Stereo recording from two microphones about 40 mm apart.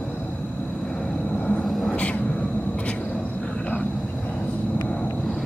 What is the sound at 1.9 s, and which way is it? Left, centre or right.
Vehicle, left.